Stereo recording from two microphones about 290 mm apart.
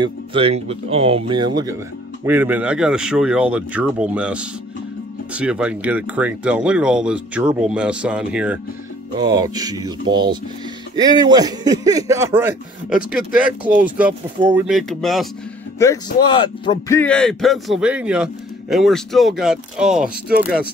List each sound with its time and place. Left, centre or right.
0.0 s speech: centre
15.8 s speech: centre